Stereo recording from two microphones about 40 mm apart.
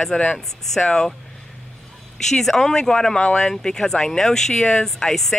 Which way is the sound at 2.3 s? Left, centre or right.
Centre.